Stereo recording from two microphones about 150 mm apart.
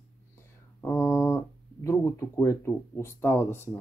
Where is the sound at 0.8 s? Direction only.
15° left (ahead or behind).